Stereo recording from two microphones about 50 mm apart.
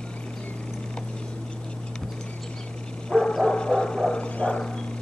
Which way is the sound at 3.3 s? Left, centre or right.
Centre.